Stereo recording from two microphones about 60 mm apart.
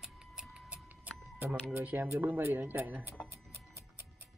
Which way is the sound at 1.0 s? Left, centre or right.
Right.